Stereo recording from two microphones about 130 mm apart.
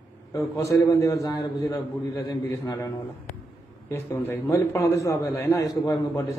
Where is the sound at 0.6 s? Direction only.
25° left (ahead or behind).